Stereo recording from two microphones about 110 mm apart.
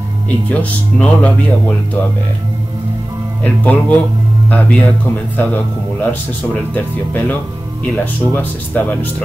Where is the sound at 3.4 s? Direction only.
15° left (ahead or behind).